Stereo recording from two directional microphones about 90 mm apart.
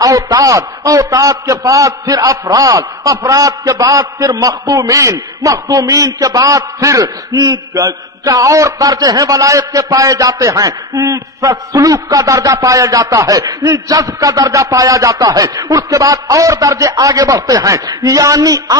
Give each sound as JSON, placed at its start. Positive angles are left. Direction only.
{"t": 0.0, "sound": "a man's voice", "side_deg": -40}
{"t": 7.3, "sound": "a man's voice", "side_deg": -55}